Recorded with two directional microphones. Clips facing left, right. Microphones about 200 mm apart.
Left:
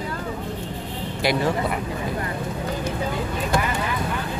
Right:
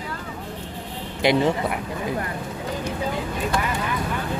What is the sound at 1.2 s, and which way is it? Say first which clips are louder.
Speech: right 3 dB; 20° right (ahead or behind).